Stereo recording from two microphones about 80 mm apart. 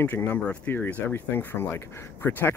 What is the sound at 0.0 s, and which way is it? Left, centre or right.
Speech, left.